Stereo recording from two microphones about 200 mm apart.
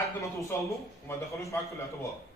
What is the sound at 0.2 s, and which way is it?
A man's voice, 15° left (ahead or behind).